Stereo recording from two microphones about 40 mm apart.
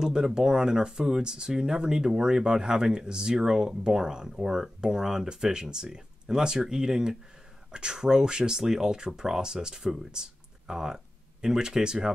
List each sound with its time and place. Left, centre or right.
0.0 s speech: centre